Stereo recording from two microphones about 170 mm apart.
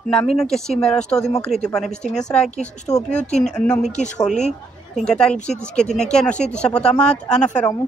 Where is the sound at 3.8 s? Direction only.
45° left (ahead or behind).